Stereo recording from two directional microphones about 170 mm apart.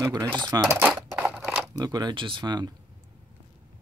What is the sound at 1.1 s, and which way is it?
Scissors, 10° right (ahead or behind).